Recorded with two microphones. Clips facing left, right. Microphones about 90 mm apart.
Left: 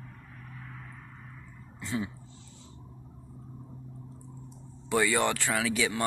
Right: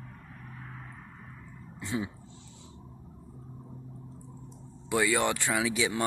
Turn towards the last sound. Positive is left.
turn(degrees=-15)  # may be behind; listen again after turning